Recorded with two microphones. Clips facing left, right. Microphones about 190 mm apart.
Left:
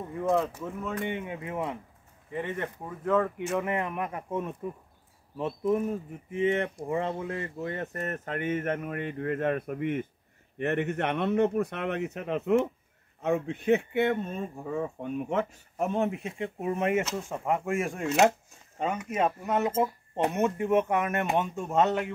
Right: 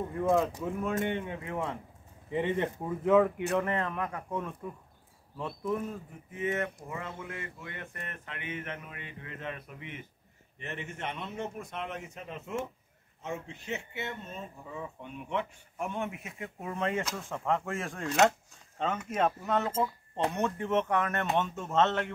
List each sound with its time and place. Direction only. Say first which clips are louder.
0.1 s speech: left 1 dB; centre (ahead or behind)
1.1 s speech: left 1 dB; 15° left (ahead or behind)
2.3 s speech: right 3 dB; 20° right (ahead or behind)
3.5 s speech: left 2 dB; 15° left (ahead or behind)